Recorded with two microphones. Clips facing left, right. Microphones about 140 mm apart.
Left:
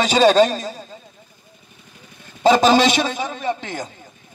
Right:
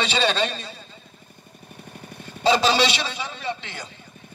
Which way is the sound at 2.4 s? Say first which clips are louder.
Left 6 dB; 45° left (ahead or behind).